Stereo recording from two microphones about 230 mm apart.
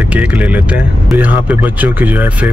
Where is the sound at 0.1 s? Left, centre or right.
Centre.